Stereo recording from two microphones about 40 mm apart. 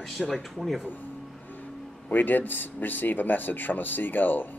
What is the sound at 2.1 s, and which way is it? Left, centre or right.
A man's voice, left.